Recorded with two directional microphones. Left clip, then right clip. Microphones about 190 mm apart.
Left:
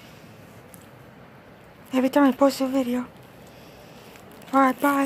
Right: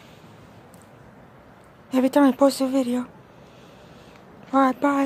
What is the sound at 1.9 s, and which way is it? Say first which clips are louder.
A woman's voice: right 1 dB; 15° right (ahead or behind).